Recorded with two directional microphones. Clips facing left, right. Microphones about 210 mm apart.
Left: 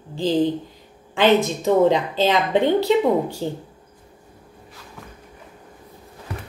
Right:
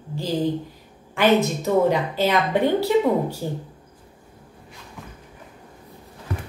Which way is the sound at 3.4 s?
25° left (ahead or behind).